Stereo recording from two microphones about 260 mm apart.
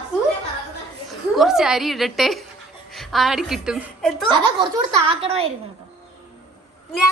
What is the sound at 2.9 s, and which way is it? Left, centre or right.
A woman's voice, centre.